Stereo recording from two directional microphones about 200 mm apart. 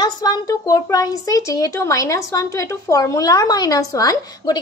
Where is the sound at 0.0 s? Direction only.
20° left (ahead or behind).